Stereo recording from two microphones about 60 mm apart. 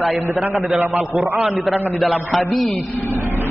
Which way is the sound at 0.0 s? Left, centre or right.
Centre.